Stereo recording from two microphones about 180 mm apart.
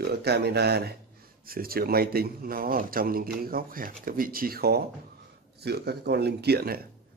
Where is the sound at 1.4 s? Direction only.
55° right (ahead or behind).